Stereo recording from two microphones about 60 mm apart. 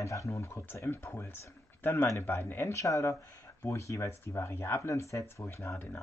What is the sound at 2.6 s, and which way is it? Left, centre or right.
Speech, left.